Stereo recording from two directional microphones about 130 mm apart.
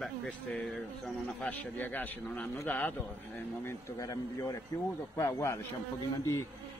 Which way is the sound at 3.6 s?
25° left (ahead or behind).